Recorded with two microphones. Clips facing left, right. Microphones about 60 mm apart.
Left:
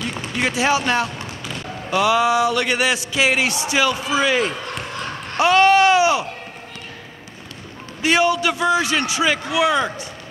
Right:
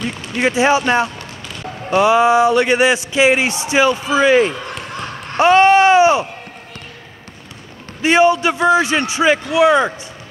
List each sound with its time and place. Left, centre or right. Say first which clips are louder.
0.4 s a man's voice: right 5 dB; right
8.0 s a man's voice: right 5 dB; right